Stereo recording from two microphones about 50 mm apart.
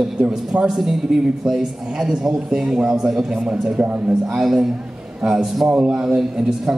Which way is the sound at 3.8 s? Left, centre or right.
Right.